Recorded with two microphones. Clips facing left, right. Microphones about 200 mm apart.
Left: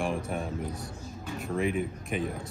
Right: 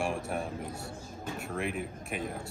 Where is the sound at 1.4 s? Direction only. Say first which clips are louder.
Left 7 dB; centre (ahead or behind).